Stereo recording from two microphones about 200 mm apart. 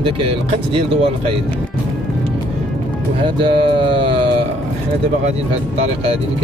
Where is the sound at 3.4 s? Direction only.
25° right (ahead or behind).